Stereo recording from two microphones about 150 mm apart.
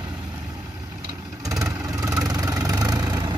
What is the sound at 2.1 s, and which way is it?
Vehicle, 25° right (ahead or behind).